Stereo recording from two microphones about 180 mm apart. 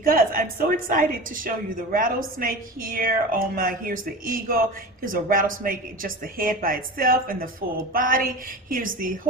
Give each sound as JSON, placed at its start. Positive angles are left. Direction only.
{"t": 0.0, "sound": "a woman's voice", "side_deg": -50}